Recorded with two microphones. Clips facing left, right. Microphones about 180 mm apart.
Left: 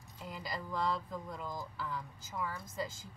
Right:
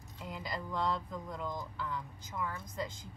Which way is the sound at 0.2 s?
Centre (ahead or behind).